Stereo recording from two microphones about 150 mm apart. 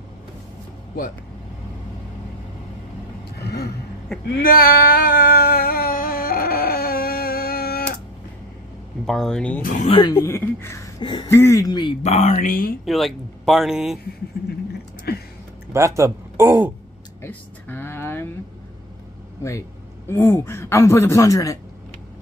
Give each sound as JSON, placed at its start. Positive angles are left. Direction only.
{"t": 3.3, "sound": "a sound", "side_deg": 90}
{"t": 4.4, "sound": "a sound", "side_deg": 80}
{"t": 9.0, "sound": "speech", "side_deg": 0}
{"t": 9.6, "sound": "speech", "side_deg": 60}
{"t": 10.1, "sound": "speech", "side_deg": 15}
{"t": 11.0, "sound": "speech", "side_deg": 30}
{"t": 11.2, "sound": "a man's voice", "side_deg": 20}
{"t": 12.0, "sound": "speech", "side_deg": 45}
{"t": 12.8, "sound": "speech", "side_deg": 0}
{"t": 15.1, "sound": "a sound", "side_deg": 90}
{"t": 15.7, "sound": "speech", "side_deg": -20}
{"t": 17.2, "sound": "a sound", "side_deg": 15}
{"t": 20.1, "sound": "a man's voice", "side_deg": 15}